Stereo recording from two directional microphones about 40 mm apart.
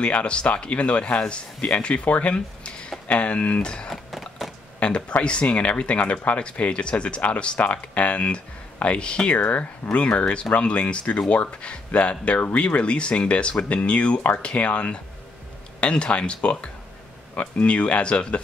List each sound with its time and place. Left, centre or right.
0.0 s speech: left
2.0 s speech: left
2.3 s a sound: left
3.1 s speech: left
3.9 s a sound: centre
4.7 s speech: left